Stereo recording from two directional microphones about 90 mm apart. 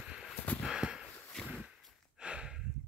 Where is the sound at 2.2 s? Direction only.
10° right (ahead or behind).